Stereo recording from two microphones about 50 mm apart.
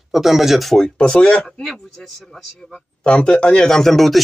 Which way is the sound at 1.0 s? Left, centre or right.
Left.